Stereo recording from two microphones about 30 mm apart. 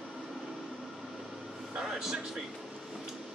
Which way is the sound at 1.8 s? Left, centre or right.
Centre.